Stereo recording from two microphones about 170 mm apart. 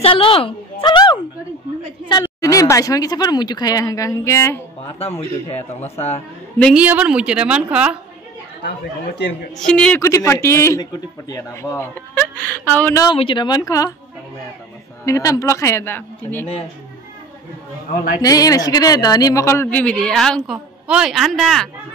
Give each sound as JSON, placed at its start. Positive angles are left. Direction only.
{"t": 0.0, "sound": "a woman's voice", "side_deg": 30}
{"t": 2.4, "sound": "speech", "side_deg": 20}
{"t": 5.9, "sound": "a man's voice", "side_deg": 40}
{"t": 6.7, "sound": "a woman's voice", "side_deg": -10}
{"t": 9.7, "sound": "a man's voice", "side_deg": 5}
{"t": 10.0, "sound": "a man's voice", "side_deg": 15}
{"t": 13.0, "sound": "speech", "side_deg": 30}
{"t": 15.0, "sound": "a man's voice", "side_deg": 20}
{"t": 17.8, "sound": "speech", "side_deg": 55}
{"t": 18.2, "sound": "a woman's voice", "side_deg": 20}